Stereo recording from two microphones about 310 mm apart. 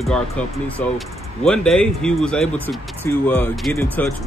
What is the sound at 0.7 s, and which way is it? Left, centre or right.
Speech, centre.